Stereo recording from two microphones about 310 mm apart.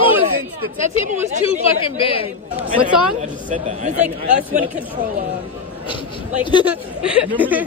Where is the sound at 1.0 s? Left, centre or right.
Right.